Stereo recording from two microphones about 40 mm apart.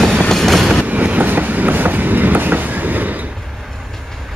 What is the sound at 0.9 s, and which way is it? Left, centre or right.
Train, right.